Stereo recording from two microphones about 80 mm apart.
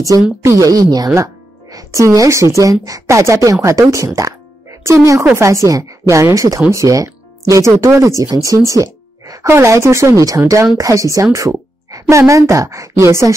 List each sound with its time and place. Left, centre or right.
0.4 s a woman's voice: right